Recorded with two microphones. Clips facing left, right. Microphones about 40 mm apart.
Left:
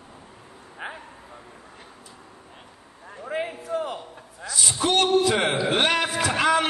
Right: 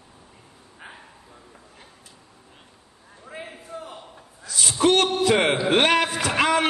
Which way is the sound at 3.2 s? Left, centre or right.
Left.